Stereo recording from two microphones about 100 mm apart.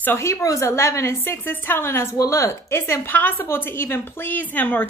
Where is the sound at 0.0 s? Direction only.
25° left (ahead or behind).